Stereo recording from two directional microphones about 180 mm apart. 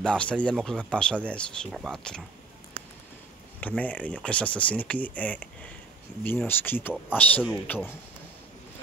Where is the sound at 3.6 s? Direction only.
10° left (ahead or behind).